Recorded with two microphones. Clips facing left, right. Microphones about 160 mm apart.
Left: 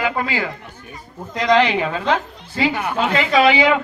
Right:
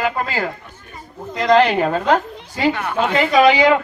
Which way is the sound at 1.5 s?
45° right (ahead or behind).